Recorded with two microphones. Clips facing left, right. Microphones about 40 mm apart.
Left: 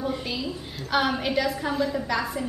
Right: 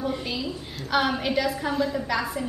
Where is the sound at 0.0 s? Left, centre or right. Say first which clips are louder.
Even; centre.